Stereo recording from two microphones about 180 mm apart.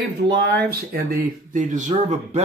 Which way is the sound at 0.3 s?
65° right (ahead or behind).